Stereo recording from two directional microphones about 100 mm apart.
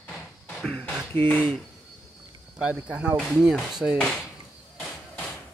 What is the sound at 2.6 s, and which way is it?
Speech, 10° right (ahead or behind).